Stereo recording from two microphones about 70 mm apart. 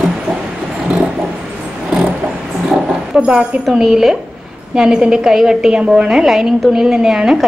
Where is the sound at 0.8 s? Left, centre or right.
Centre.